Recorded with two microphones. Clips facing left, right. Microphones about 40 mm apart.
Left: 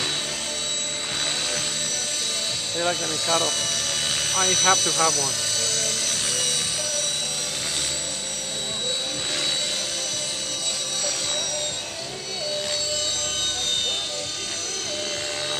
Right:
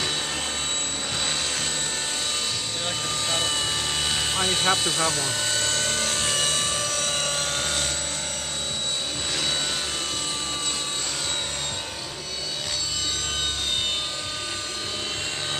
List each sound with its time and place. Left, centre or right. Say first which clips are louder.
3.3 s helicopter: left 3 dB; right